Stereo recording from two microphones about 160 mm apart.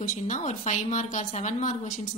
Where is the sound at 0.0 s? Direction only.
50° left (ahead or behind).